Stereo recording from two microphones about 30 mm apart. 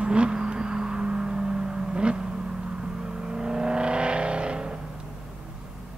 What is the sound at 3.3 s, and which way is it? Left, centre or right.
Vehicle, right.